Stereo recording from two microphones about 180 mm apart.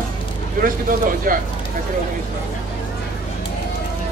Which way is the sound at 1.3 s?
50° right (ahead or behind).